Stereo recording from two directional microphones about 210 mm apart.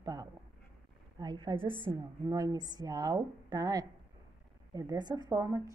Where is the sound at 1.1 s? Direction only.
20° right (ahead or behind).